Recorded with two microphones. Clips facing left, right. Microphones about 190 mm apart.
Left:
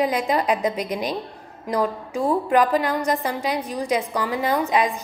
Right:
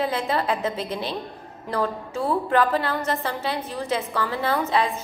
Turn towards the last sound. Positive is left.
turn(degrees=15)  # may be behind; listen again after turning